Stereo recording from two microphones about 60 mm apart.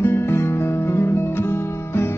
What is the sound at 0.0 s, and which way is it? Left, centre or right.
Guitar, left.